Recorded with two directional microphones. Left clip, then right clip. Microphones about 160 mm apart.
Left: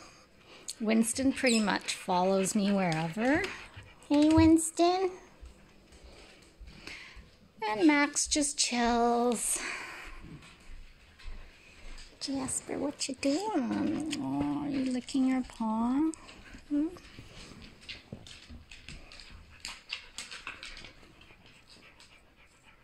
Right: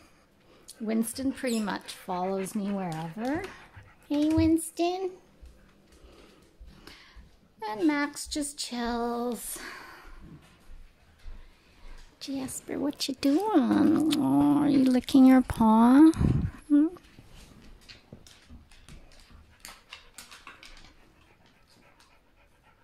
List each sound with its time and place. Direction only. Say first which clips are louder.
0.5 s speech: left 2 dB; 5° right (ahead or behind)
6.8 s a sound: left 5 dB; 10° right (ahead or behind)
7.6 s speech: left 2 dB; 5° right (ahead or behind)
12.2 s speech: even; 25° right (ahead or behind)
13.5 s speech: right 8 dB; 50° right (ahead or behind)